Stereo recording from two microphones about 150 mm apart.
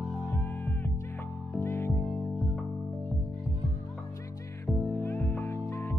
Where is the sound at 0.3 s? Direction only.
15° left (ahead or behind).